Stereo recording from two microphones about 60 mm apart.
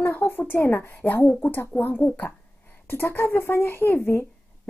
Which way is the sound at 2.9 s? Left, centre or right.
Left.